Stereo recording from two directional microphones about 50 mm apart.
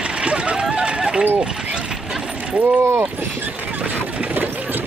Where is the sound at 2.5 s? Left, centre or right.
Right.